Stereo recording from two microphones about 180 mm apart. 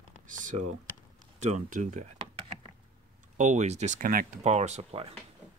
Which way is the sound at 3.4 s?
40° right (ahead or behind).